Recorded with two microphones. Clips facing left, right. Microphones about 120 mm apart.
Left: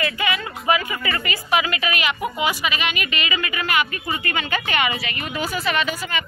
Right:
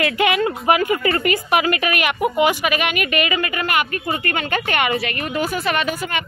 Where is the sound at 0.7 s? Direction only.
55° right (ahead or behind).